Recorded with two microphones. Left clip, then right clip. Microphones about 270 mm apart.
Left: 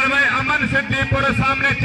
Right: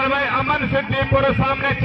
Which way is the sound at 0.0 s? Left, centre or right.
Left.